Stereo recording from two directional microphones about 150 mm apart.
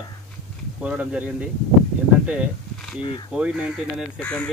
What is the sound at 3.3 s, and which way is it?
Speech, 5° right (ahead or behind).